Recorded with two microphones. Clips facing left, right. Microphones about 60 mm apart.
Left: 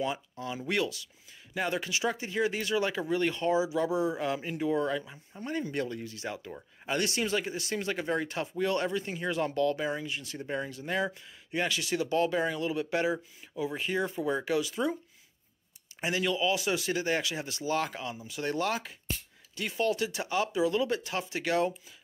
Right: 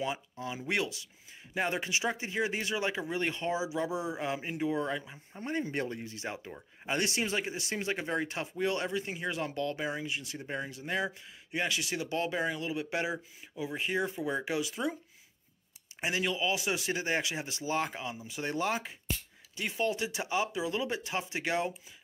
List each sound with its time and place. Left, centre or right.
0.0 s speech: centre
16.0 s speech: centre